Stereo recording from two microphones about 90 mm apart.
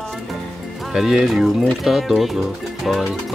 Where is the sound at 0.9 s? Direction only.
5° right (ahead or behind).